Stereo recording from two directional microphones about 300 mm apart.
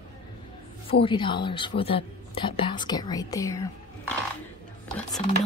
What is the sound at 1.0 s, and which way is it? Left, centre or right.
Speech, centre.